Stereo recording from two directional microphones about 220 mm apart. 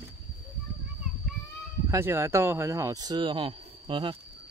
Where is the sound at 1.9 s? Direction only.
10° right (ahead or behind).